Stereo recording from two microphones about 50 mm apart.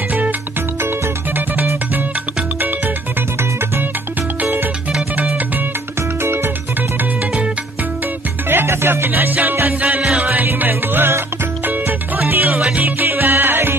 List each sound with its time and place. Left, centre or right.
0.8 s music: right
6.2 s music: right
8.5 s music: right
10.7 s music: right
12.5 s music: centre
12.8 s music: right